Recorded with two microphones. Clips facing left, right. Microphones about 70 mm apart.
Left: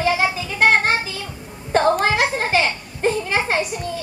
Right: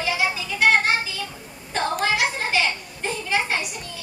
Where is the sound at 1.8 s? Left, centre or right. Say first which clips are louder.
Left 3 dB; left.